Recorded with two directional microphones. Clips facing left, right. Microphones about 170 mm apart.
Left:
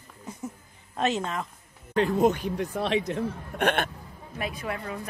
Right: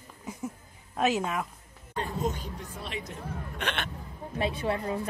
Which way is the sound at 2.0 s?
75° left (ahead or behind).